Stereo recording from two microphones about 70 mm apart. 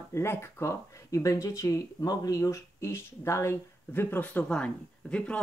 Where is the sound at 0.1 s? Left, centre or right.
Left.